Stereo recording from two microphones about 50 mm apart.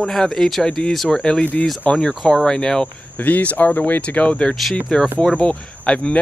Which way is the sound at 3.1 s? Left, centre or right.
Left.